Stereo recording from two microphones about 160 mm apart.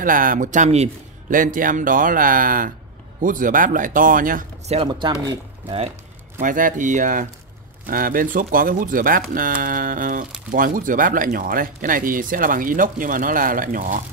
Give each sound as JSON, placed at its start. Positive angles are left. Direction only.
{"t": 0.0, "sound": "speech", "side_deg": -60}
{"t": 1.3, "sound": "speech", "side_deg": -55}
{"t": 4.8, "sound": "speech", "side_deg": -25}
{"t": 6.4, "sound": "speech", "side_deg": -55}